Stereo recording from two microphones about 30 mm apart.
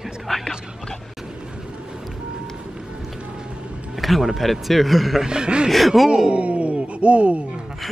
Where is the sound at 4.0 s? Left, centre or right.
Centre.